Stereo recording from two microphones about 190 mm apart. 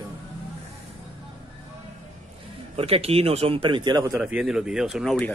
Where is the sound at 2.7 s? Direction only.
30° right (ahead or behind).